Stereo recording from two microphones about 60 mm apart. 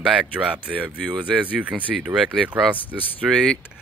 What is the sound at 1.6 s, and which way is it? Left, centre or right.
Speech, right.